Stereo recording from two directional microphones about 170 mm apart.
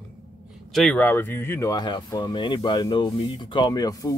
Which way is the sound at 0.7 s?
5° left (ahead or behind).